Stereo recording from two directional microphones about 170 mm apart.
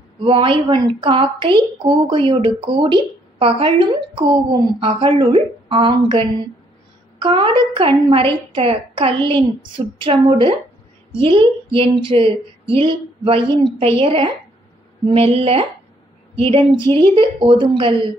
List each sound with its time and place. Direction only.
0.2 s a woman's voice: 30° right (ahead or behind)